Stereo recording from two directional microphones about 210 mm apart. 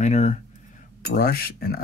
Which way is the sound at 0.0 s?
35° left (ahead or behind).